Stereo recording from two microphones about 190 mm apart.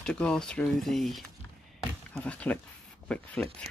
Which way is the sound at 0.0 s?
5° left (ahead or behind).